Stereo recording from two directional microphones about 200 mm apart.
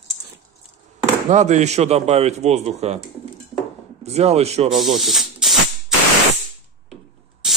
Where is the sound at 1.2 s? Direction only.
35° right (ahead or behind).